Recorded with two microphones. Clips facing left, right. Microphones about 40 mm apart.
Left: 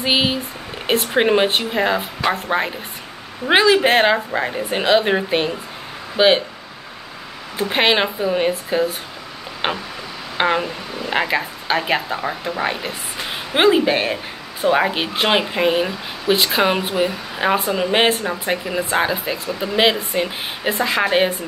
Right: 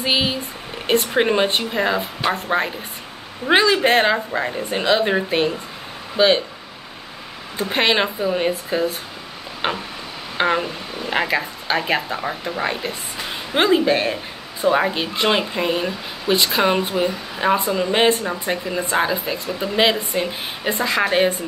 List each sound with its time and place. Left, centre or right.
0.0 s speech: centre
7.6 s speech: centre
9.6 s a sound: centre
10.4 s a woman's voice: centre